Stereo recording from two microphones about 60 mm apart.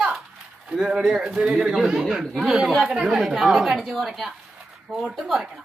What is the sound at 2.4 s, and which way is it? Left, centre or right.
A man's voice, centre.